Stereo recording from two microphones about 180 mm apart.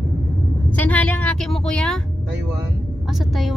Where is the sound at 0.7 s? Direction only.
10° left (ahead or behind).